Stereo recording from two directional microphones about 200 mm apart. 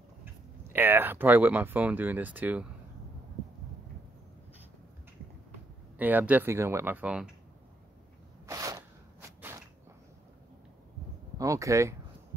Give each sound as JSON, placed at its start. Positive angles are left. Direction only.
{"t": 0.7, "sound": "speech", "side_deg": -10}
{"t": 5.9, "sound": "speech", "side_deg": -10}
{"t": 8.5, "sound": "a sound", "side_deg": -15}
{"t": 11.3, "sound": "speech", "side_deg": -15}